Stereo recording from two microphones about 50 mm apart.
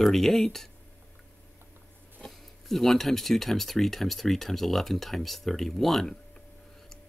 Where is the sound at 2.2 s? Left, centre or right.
Centre.